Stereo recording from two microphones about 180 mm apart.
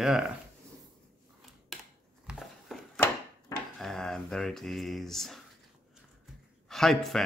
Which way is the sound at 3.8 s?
5° left (ahead or behind).